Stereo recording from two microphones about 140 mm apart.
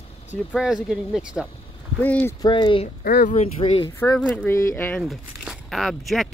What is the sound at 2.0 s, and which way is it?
Speech, 15° left (ahead or behind).